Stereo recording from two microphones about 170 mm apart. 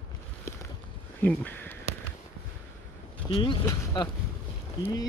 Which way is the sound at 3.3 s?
30° left (ahead or behind).